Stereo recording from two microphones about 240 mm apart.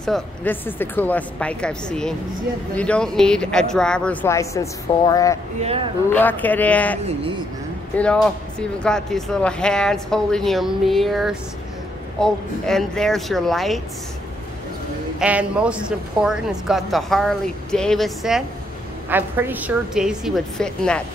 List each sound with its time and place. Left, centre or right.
0.0 s speech: centre
5.6 s a man's voice: right
6.0 s a man's voice: centre
8.0 s speech: centre
15.1 s speech: centre